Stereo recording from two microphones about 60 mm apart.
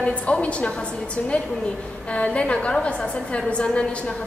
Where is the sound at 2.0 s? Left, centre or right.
Left.